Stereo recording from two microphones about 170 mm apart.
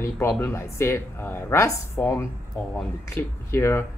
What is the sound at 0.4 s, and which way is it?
Speech, 15° left (ahead or behind).